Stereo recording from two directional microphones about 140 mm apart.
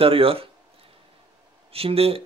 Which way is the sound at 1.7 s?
45° right (ahead or behind).